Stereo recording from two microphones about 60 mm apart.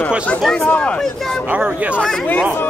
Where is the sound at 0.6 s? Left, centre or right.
Centre.